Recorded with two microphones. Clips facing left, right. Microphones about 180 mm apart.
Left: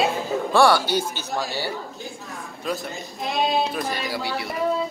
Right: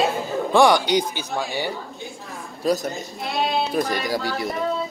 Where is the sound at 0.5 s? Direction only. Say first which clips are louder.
Right 2 dB; 15° right (ahead or behind).